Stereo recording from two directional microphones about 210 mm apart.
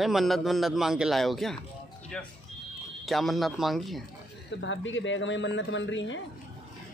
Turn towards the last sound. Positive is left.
turn(degrees=60)  # may be behind; listen again after turning